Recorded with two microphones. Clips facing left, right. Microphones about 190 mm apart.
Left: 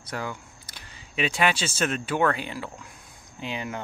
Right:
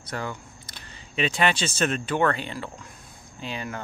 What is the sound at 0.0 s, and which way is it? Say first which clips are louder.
Speech: right 1 dB; 10° left (ahead or behind).